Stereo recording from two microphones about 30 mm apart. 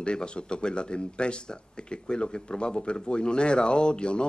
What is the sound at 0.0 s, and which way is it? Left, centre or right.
Speech, left.